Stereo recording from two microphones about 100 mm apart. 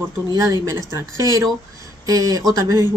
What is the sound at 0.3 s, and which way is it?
A woman's voice, 35° right (ahead or behind).